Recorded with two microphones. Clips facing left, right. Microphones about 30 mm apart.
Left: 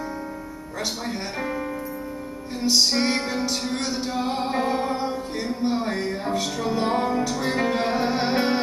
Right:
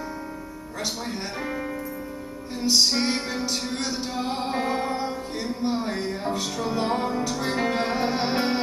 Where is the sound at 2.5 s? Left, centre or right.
Centre.